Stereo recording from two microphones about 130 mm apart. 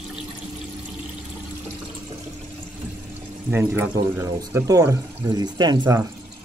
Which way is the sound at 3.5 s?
15° right (ahead or behind).